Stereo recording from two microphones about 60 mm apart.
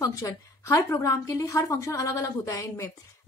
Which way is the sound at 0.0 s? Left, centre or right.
Left.